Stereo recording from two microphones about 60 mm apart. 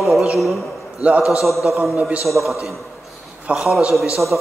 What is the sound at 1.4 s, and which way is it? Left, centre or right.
A man's voice, centre.